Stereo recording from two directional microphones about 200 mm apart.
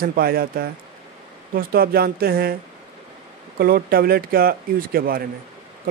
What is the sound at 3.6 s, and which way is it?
Speech, 50° right (ahead or behind).